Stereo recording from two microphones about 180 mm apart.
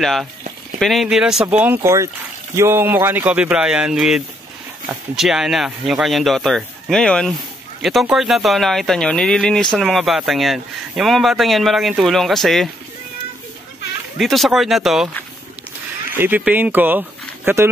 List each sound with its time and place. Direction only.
0.0 s speech: centre (ahead or behind)
14.1 s speech: centre (ahead or behind)
16.1 s speech: 10° right (ahead or behind)